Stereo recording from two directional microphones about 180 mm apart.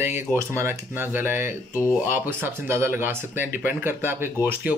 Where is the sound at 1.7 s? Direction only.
15° left (ahead or behind).